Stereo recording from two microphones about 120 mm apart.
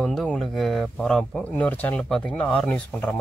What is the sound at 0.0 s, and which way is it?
Speech, 5° left (ahead or behind).